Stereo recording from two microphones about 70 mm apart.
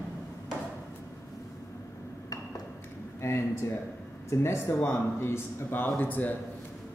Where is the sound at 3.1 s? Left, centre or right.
Left.